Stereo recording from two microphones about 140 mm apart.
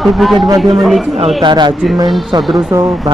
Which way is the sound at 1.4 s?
35° right (ahead or behind).